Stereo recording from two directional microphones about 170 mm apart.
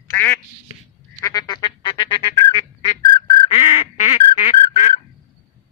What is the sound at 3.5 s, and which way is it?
Goose, 40° left (ahead or behind).